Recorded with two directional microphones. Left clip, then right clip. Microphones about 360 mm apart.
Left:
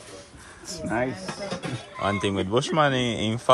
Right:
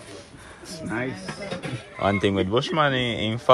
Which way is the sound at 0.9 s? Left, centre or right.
Left.